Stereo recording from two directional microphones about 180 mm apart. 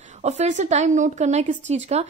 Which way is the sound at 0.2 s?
40° right (ahead or behind).